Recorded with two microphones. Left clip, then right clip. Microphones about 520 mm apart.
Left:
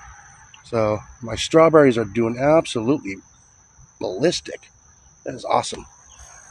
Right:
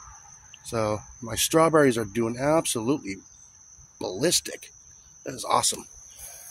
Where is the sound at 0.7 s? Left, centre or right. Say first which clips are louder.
Left 6 dB; right.